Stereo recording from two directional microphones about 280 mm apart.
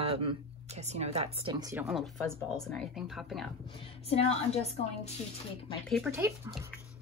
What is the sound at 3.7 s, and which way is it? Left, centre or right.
A woman's voice, centre.